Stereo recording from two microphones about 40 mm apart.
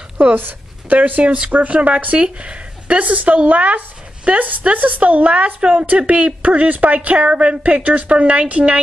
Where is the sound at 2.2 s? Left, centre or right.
Right.